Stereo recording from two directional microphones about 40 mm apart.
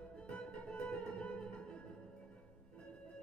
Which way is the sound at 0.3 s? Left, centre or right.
Left.